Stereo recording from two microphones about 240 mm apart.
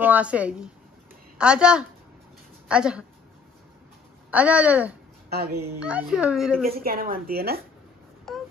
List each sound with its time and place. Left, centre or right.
0.0 s a woman's voice: centre
4.3 s speech: centre
5.3 s speech: right
5.8 s speech: centre
6.8 s speech: right
8.3 s a sound: centre